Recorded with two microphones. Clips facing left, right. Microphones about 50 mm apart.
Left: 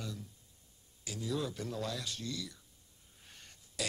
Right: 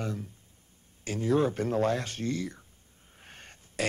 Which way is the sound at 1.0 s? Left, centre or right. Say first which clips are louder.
Right 11 dB; right.